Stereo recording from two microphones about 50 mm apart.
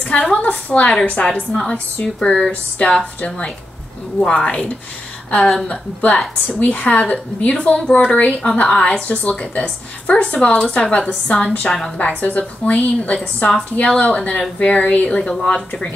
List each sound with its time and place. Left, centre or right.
0.0 s a woman's voice: left
1.5 s a woman's voice: centre